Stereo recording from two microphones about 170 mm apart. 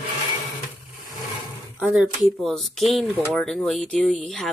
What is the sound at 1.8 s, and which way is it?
Speech, 5° right (ahead or behind).